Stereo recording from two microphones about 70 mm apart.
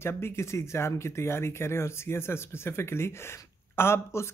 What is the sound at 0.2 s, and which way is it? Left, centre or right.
Speech, left.